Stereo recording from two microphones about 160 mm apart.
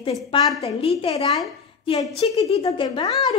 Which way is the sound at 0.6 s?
40° left (ahead or behind).